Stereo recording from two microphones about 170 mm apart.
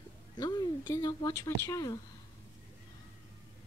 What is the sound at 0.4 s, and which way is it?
A woman's voice, 25° left (ahead or behind).